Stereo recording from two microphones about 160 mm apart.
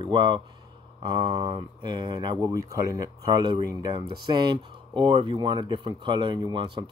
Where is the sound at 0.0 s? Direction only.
30° right (ahead or behind).